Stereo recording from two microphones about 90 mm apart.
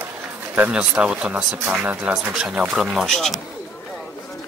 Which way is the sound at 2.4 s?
Centre (ahead or behind).